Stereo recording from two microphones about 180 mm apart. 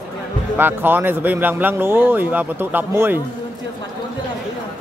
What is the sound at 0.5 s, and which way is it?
A man's voice, 10° right (ahead or behind).